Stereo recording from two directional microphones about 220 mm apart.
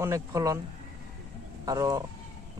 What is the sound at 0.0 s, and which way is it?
Speech, 15° right (ahead or behind).